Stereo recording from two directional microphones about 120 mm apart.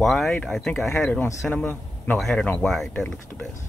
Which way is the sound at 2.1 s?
Centre (ahead or behind).